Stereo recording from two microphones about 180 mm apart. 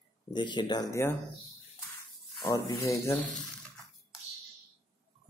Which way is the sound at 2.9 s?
15° left (ahead or behind).